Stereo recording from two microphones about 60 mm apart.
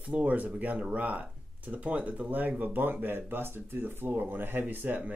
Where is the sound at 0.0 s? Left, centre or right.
Right.